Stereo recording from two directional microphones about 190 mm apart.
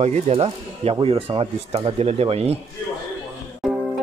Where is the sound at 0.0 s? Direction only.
35° right (ahead or behind).